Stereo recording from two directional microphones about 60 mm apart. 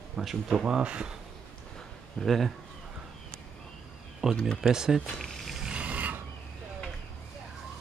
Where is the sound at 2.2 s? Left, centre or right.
Centre.